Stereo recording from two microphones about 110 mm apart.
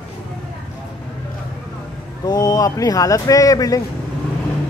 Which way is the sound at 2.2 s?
35° left (ahead or behind).